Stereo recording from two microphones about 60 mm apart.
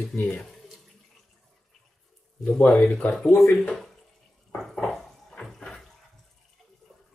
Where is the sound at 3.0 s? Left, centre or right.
Centre.